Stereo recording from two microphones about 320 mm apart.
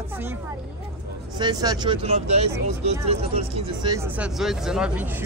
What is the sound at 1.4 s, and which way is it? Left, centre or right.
Speech, centre.